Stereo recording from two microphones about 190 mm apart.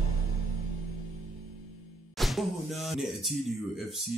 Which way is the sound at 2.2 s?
Centre (ahead or behind).